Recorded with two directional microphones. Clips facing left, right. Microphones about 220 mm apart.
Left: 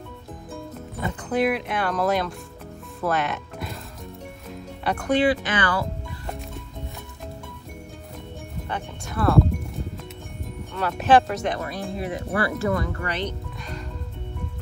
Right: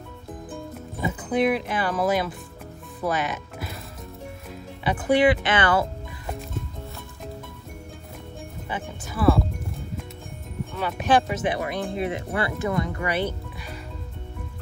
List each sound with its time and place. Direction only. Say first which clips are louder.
0.9 s speech: even; centre (ahead or behind)
3.0 s music: left 1 dB; centre (ahead or behind)
4.8 s speech: right 1 dB; 5° right (ahead or behind)
5.2 s speech: right 2 dB; 20° right (ahead or behind)
8.6 s speech: even; 5° right (ahead or behind)
10.7 s speech: left 3 dB; centre (ahead or behind)